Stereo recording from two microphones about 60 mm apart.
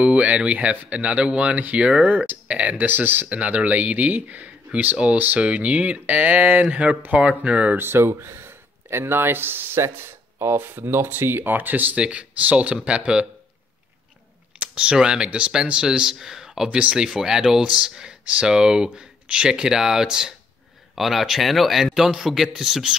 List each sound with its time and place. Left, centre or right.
0.0 s speech: right
7.7 s speech: right; by 13.3 s centre
14.6 s speech: centre